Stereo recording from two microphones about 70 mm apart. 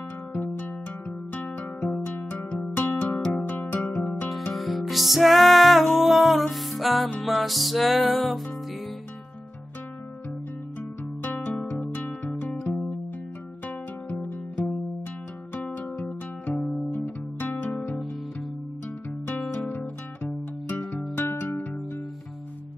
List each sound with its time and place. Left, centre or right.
0.3 s music: left
3.2 s music: centre
3.7 s music: left
4.5 s music: centre
11.2 s music: left
13.7 s music: left
16.5 s music: centre
16.9 s music: left
19.7 s music: left